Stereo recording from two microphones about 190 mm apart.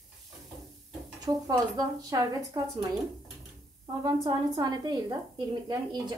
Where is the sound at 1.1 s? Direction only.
20° right (ahead or behind).